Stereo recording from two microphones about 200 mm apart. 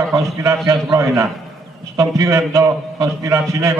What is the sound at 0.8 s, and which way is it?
A man's voice, 15° right (ahead or behind).